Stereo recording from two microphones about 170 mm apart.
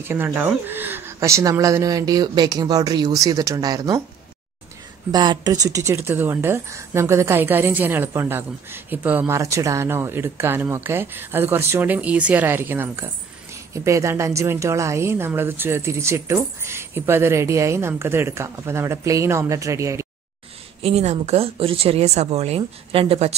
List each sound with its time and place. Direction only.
0.0 s speech: 15° right (ahead or behind)
5.1 s speech: 25° right (ahead or behind)
20.8 s speech: 40° right (ahead or behind)